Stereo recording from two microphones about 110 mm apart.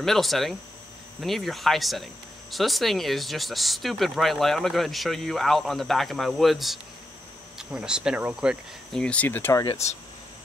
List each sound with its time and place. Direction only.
0.0 s speech: centre (ahead or behind)
8.9 s speech: 10° left (ahead or behind)
9.8 s speech: 75° left (ahead or behind)